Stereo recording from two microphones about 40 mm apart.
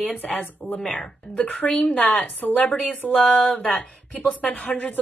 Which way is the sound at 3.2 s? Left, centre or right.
Left.